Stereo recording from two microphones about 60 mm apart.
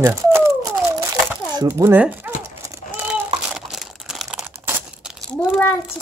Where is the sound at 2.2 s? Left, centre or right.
Right.